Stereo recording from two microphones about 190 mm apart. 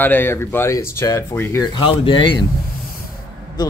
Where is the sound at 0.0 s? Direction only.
10° left (ahead or behind).